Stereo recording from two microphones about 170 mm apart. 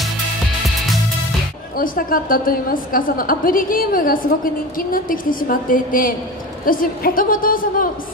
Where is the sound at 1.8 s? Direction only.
55° left (ahead or behind).